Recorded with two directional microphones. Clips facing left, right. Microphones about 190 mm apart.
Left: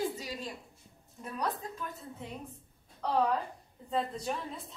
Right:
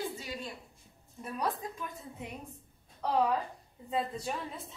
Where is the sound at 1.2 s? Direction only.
10° right (ahead or behind).